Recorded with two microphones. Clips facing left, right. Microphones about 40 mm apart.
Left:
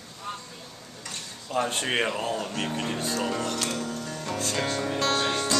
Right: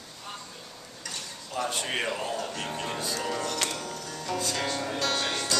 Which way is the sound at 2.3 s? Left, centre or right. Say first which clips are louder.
Left 3 dB; left.